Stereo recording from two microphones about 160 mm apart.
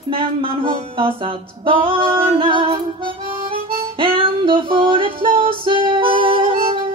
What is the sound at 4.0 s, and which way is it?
Music, 35° right (ahead or behind).